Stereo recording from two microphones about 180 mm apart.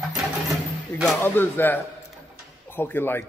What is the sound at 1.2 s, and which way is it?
A man's voice, 10° left (ahead or behind).